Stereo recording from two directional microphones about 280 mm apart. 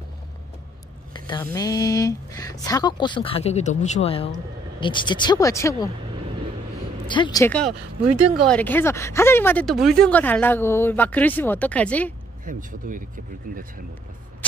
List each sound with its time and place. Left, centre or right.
1.1 s speech: centre
7.1 s speech: centre
12.4 s speech: right